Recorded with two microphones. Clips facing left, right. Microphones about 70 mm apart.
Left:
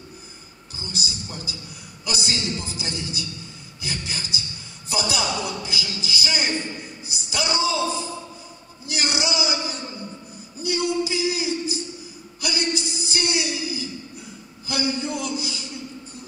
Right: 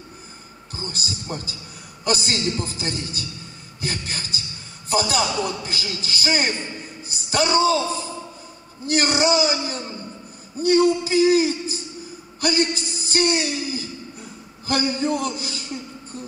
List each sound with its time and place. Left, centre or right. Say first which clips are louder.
0.7 s a man's voice: right 1 dB; right